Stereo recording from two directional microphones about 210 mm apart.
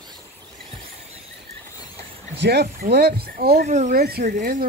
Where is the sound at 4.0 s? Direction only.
45° right (ahead or behind).